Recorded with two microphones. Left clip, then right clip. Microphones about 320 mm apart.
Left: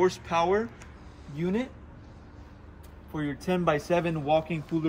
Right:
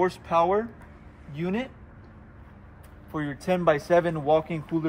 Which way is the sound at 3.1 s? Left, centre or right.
Centre.